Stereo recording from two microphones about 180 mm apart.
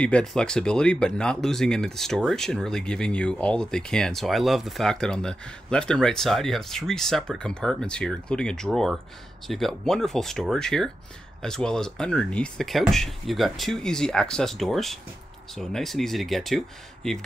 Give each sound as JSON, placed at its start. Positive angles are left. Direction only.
{"t": 0.0, "sound": "speech", "side_deg": 5}